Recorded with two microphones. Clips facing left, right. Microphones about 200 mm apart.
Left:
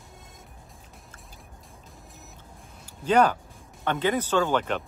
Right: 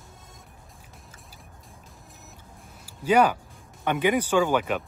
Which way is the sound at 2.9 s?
10° right (ahead or behind).